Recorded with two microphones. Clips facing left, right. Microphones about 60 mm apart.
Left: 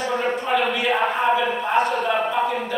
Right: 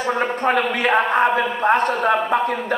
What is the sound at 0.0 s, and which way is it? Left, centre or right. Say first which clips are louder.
Speech: right 3 dB; right.